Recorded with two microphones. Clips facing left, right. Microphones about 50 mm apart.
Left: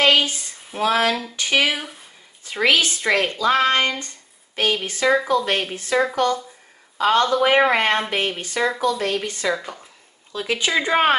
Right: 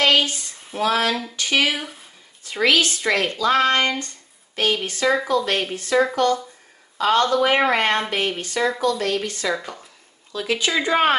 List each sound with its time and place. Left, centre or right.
0.0 s a sound: centre
0.7 s speech: centre
1.7 s speech: centre
2.4 s speech: left
7.0 s speech: centre
9.6 s speech: centre
10.3 s speech: left